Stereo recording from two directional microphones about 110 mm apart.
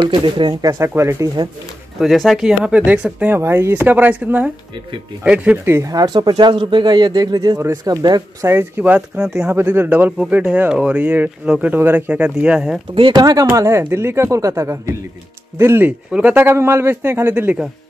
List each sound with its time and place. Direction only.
0.0 s a man's voice: 45° right (ahead or behind); by 1.3 s 25° right (ahead or behind)
2.0 s speech: centre (ahead or behind)
5.8 s speech: 35° right (ahead or behind)
8.5 s speech: 20° right (ahead or behind)
9.6 s speech: 20° right (ahead or behind)
12.9 s speech: 50° right (ahead or behind)
13.2 s a man's voice: 35° right (ahead or behind); by 17.6 s 15° right (ahead or behind)